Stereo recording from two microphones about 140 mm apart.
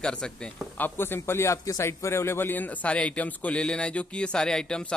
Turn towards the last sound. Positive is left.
turn(degrees=5)  # may be behind; listen again after turning